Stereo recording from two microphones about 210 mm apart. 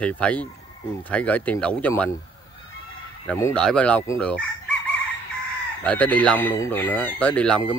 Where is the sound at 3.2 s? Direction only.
5° left (ahead or behind).